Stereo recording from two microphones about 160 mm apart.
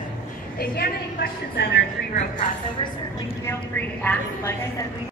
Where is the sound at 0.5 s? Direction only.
80° left.